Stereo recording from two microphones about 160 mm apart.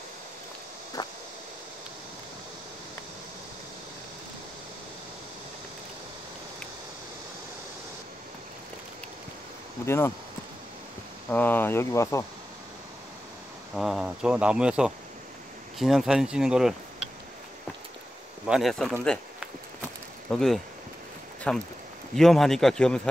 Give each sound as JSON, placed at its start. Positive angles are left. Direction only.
{"t": 1.0, "sound": "a sound", "side_deg": 25}
{"t": 9.8, "sound": "speech", "side_deg": 15}
{"t": 11.2, "sound": "speech", "side_deg": 10}
{"t": 13.7, "sound": "speech", "side_deg": -5}
{"t": 18.4, "sound": "speech", "side_deg": 0}
{"t": 20.2, "sound": "speech", "side_deg": 0}